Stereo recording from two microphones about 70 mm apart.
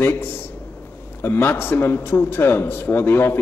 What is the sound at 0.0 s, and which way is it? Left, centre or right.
A man's voice, left.